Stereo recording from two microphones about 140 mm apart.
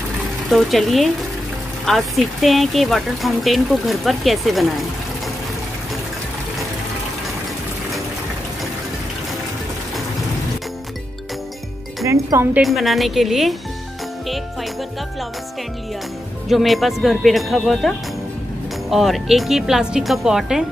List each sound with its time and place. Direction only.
0.5 s speech: centre (ahead or behind)
12.1 s speech: 20° right (ahead or behind)
12.6 s speech: centre (ahead or behind)
14.2 s music: centre (ahead or behind)
16.4 s speech: centre (ahead or behind)